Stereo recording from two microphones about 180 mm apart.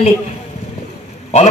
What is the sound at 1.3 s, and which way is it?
Speech, 35° left (ahead or behind).